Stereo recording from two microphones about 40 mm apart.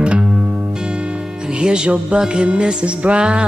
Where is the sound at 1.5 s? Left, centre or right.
Right.